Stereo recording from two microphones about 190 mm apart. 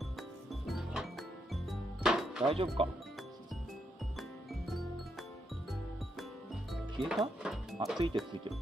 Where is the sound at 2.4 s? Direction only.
30° right (ahead or behind).